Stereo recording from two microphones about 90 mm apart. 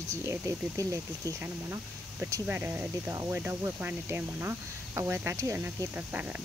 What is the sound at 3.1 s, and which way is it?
Speech, 35° right (ahead or behind).